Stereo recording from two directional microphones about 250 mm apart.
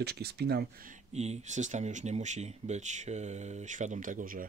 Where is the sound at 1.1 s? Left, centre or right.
Right.